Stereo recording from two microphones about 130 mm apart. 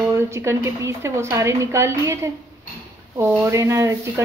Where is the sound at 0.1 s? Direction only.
20° right (ahead or behind).